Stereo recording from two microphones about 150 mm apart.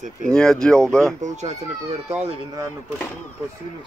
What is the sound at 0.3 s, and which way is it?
Speech, 5° left (ahead or behind).